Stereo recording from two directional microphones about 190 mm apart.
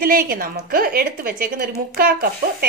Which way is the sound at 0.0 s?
50° right (ahead or behind).